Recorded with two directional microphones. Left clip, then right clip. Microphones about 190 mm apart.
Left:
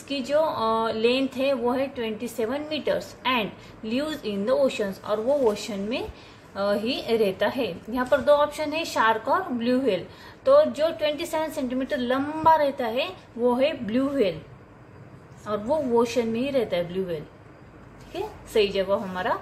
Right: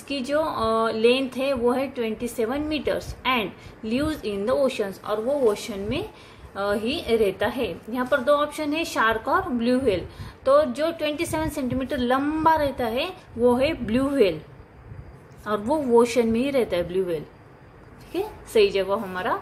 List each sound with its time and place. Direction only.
0.1 s a woman's voice: 20° right (ahead or behind)
15.4 s a woman's voice: 30° right (ahead or behind)